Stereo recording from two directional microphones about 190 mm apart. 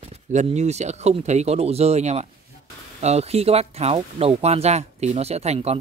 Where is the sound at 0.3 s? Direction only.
35° right (ahead or behind).